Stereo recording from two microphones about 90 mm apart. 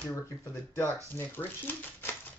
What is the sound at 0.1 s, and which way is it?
Speech, 30° left (ahead or behind).